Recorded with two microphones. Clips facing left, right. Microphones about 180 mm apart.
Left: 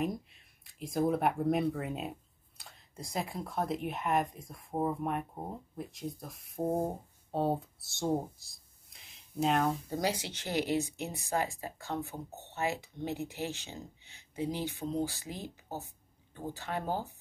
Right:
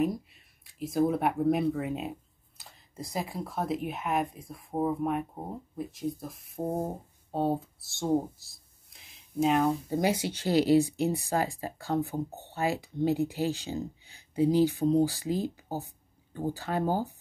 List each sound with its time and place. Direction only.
0.0 s speech: centre (ahead or behind)
9.9 s speech: 25° right (ahead or behind)